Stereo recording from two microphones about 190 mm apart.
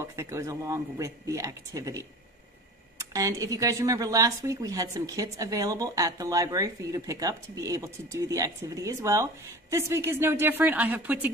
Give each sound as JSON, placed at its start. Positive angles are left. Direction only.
{"t": 0.0, "sound": "speech", "side_deg": -15}
{"t": 3.1, "sound": "speech", "side_deg": -15}